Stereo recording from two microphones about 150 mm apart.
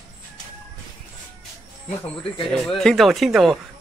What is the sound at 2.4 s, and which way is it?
Speech, 5° left (ahead or behind).